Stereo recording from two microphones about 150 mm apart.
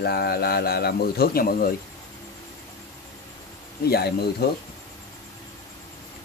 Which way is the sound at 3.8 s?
90° left.